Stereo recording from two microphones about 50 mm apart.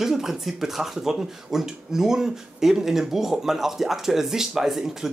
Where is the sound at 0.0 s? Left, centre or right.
Centre.